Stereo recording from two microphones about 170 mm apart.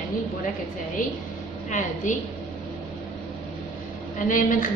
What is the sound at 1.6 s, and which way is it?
Speech, 50° left (ahead or behind).